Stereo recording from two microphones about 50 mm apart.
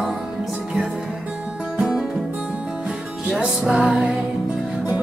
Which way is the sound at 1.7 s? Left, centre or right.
Centre.